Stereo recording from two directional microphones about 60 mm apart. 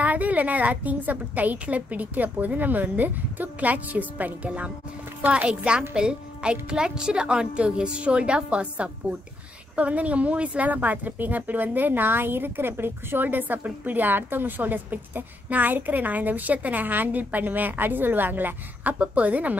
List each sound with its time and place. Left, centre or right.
0.0 s a woman's voice: right